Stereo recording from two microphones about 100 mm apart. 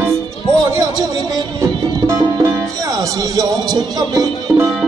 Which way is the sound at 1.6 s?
30° right (ahead or behind).